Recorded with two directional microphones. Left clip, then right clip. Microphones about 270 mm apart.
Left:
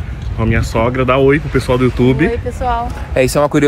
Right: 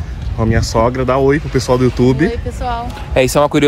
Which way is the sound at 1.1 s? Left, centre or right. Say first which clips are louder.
Left 1 dB; right.